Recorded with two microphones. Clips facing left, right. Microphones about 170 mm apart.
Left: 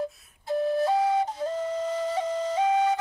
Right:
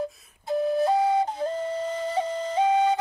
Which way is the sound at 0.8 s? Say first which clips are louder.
Right 2 dB; 20° right (ahead or behind).